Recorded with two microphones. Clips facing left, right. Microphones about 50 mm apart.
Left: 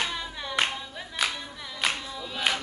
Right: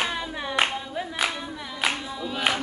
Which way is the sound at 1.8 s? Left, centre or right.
Centre.